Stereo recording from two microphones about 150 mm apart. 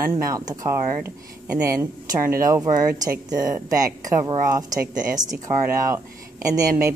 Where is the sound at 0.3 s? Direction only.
20° right (ahead or behind).